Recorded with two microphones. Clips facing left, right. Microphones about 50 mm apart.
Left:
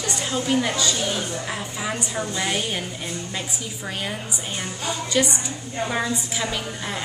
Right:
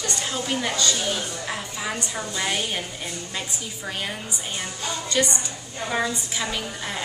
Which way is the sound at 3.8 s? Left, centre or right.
Centre.